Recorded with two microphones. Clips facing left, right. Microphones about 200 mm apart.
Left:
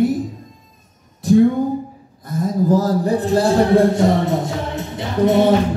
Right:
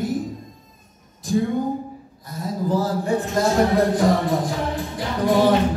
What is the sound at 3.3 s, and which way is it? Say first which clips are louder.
Speech: left 6 dB; 30° left (ahead or behind).